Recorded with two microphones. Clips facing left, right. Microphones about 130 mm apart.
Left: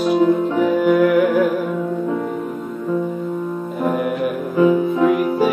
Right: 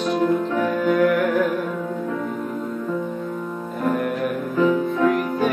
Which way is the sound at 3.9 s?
10° left (ahead or behind).